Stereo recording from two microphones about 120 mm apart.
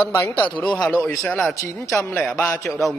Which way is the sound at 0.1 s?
20° left (ahead or behind).